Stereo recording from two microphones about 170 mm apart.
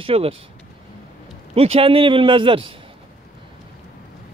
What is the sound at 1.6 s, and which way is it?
Speech, 35° right (ahead or behind).